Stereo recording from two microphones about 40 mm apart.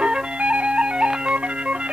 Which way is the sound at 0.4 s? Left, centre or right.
Right.